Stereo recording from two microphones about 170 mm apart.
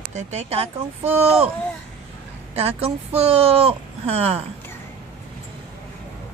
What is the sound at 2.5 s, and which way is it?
Speech, 35° right (ahead or behind).